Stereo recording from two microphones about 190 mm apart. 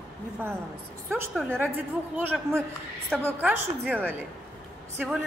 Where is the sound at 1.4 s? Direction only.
10° right (ahead or behind).